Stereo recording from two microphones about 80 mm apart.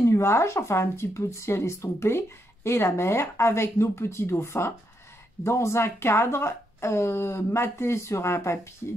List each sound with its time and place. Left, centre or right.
0.0 s speech: left